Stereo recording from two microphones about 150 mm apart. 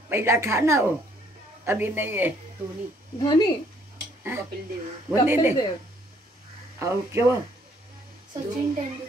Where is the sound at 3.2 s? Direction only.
30° left (ahead or behind).